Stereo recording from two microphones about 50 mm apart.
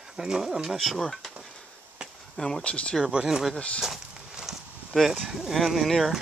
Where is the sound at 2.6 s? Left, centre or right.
Left.